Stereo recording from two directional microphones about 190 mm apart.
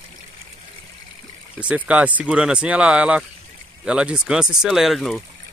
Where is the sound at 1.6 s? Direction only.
5° right (ahead or behind).